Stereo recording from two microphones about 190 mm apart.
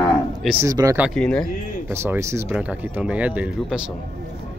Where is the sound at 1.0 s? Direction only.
Centre (ahead or behind).